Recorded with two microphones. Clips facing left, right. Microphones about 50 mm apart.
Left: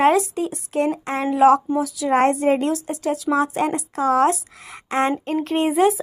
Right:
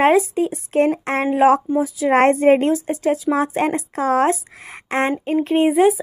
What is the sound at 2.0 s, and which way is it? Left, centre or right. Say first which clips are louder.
Speech: right 4 dB; right.